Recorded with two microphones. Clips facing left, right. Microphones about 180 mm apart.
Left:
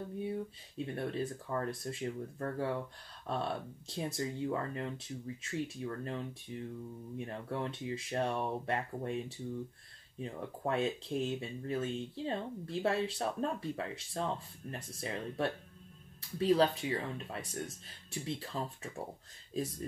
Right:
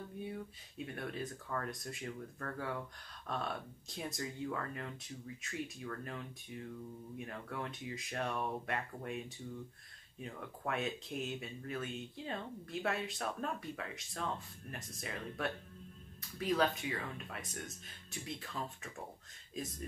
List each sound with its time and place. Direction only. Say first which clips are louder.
0.3 s speech: left 6 dB; 30° left (ahead or behind)
10.2 s speech: left 5 dB; 30° left (ahead or behind)